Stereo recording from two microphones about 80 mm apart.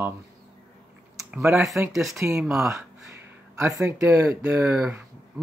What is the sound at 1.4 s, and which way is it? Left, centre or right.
Speech, right.